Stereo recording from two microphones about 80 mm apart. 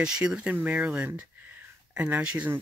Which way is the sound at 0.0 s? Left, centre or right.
Centre.